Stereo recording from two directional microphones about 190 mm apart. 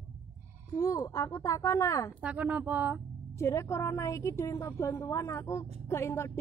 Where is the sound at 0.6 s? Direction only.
20° left (ahead or behind).